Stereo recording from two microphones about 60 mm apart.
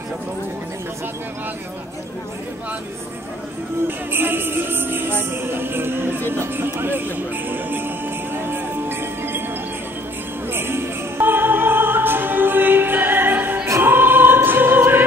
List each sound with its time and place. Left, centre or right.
3.8 s music: right
10.5 s music: right